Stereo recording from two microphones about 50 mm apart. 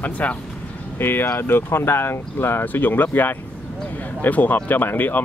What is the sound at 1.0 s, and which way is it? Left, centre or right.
Speech, left.